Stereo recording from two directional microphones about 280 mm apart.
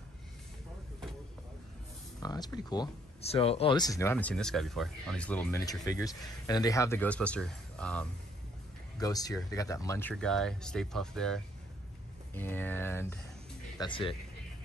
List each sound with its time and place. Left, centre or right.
2.2 s speech: centre